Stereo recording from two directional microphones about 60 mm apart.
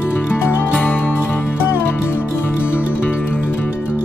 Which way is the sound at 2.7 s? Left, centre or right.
Left.